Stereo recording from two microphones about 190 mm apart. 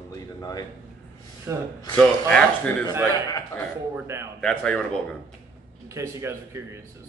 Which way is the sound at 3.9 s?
15° right (ahead or behind).